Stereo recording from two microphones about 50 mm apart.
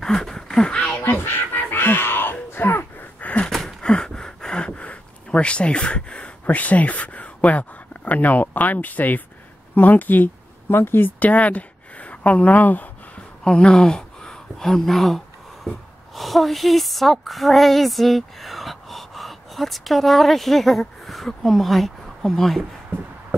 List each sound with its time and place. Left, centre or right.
0.0 s a sound: centre
1.0 s music: left
2.5 s gasp: left
3.4 s a sound: centre
3.9 s gasp: centre; by 9.2 s left
9.8 s speech: left
10.7 s a woman's voice: left
13.4 s a sound: centre
16.2 s a woman's voice: centre